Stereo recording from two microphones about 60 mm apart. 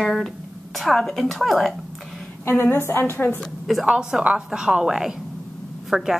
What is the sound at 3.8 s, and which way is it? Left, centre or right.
A woman's voice, centre.